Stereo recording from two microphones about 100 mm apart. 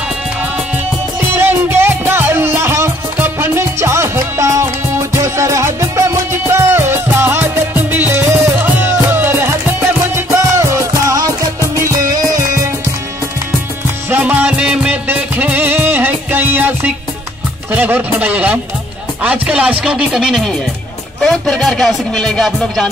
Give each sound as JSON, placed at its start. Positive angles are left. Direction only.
{"t": 1.3, "sound": "music", "side_deg": -20}
{"t": 14.1, "sound": "music", "side_deg": -15}
{"t": 17.6, "sound": "a man's voice", "side_deg": -20}
{"t": 21.2, "sound": "music", "side_deg": 5}